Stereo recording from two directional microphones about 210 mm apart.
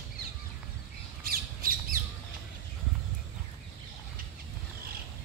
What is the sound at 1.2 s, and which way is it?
Squawk, 45° right (ahead or behind).